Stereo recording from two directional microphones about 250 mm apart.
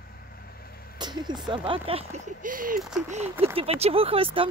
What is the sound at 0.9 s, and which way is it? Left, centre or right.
Speech, centre.